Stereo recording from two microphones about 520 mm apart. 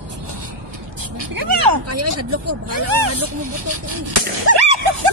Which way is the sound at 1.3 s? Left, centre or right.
Right.